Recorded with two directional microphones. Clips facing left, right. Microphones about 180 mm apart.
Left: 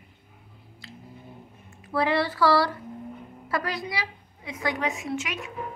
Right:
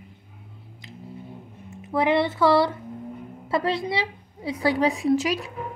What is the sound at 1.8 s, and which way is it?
A woman's voice, 20° right (ahead or behind).